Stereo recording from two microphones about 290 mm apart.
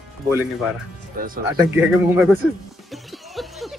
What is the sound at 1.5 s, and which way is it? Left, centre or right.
Speech, centre.